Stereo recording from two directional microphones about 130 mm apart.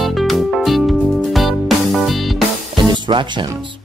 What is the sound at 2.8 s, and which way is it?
Music, 35° right (ahead or behind).